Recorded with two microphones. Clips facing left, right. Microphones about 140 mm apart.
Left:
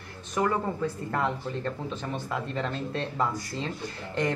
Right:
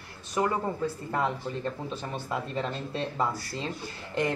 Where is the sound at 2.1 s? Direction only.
15° right (ahead or behind).